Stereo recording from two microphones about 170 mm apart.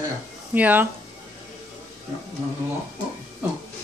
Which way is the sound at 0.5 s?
10° right (ahead or behind).